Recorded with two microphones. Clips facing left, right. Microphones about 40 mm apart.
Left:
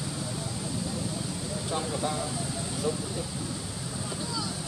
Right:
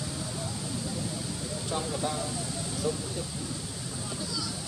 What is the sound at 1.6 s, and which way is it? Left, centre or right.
Speech, centre.